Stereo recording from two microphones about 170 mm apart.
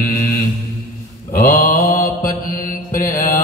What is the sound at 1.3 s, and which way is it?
Mantra, 60° left (ahead or behind).